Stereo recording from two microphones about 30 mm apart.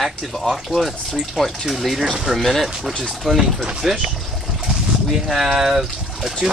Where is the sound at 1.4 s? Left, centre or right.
Centre.